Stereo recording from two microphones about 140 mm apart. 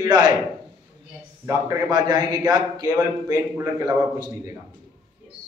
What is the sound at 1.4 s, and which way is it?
A man's voice, 25° right (ahead or behind).